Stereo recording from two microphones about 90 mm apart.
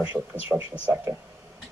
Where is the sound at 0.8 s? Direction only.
20° right (ahead or behind).